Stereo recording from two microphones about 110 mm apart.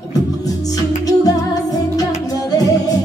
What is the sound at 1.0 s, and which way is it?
Music, 35° left (ahead or behind).